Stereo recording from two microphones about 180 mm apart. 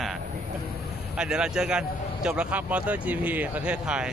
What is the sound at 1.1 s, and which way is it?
Speech, 5° right (ahead or behind).